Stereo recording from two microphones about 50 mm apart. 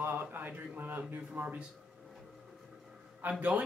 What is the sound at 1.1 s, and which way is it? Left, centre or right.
Speech, right.